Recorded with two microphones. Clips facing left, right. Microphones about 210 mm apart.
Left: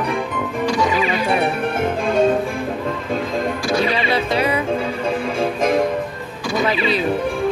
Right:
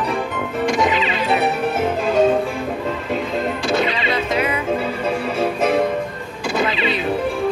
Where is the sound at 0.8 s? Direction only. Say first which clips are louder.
Even; 20° right (ahead or behind).